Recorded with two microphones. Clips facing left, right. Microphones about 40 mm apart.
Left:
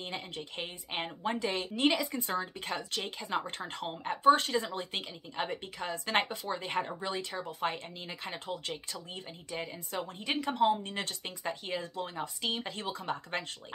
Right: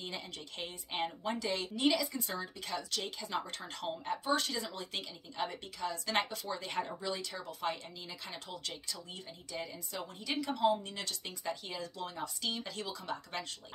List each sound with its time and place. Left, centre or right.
0.0 s a woman's voice: left